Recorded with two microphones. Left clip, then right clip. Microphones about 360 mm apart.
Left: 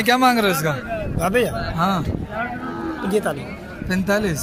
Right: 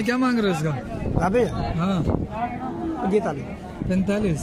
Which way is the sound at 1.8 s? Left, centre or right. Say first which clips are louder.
Left 8 dB; centre.